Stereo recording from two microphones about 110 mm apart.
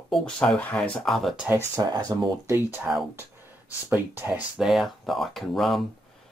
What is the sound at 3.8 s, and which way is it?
Speech, 20° right (ahead or behind).